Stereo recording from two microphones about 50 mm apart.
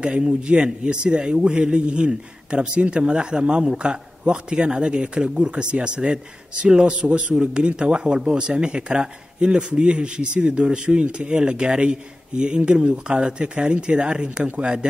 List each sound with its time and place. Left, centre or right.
0.0 s speech: right